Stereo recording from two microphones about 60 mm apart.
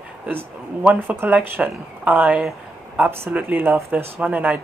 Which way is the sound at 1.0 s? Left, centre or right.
Right.